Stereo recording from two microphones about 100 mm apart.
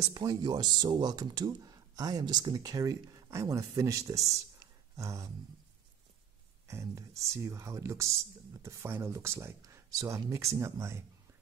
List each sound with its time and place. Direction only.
0.0 s speech: 40° right (ahead or behind)
6.7 s speech: 30° right (ahead or behind)